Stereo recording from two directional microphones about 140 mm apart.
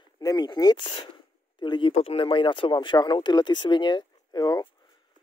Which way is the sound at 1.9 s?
45° left (ahead or behind).